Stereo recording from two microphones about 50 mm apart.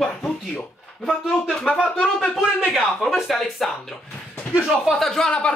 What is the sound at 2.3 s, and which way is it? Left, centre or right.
Speech, centre.